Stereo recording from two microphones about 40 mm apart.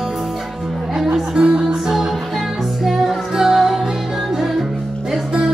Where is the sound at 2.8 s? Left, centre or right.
Centre.